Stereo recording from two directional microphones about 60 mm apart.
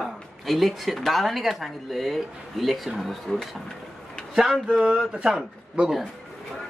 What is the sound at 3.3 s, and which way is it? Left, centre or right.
Speech, centre.